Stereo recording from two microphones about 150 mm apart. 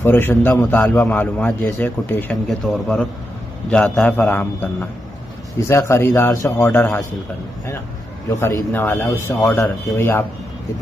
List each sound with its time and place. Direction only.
0.0 s a man's voice: 15° left (ahead or behind)
8.3 s a man's voice: 15° left (ahead or behind)